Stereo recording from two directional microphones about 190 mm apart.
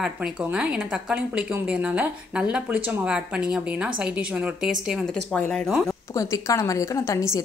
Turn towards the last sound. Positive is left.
turn(degrees=15)  # may be behind; listen again after turning